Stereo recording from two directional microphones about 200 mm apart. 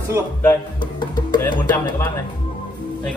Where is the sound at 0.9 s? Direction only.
20° left (ahead or behind).